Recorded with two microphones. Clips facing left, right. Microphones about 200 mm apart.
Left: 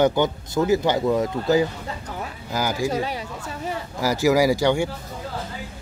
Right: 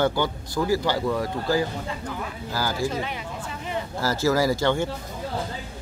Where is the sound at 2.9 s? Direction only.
40° left (ahead or behind).